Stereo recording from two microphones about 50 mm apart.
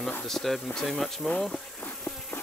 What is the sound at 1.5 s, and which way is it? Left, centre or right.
Insect, left.